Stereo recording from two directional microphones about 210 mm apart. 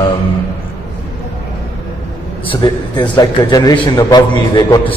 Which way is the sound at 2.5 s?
20° left (ahead or behind).